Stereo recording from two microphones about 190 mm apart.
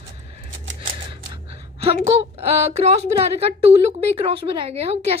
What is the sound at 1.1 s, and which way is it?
A woman's voice, 30° right (ahead or behind).